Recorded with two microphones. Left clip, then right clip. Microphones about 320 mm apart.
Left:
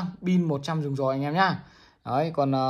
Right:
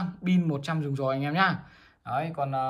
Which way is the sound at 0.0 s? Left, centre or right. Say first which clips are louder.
Left 1 dB; centre.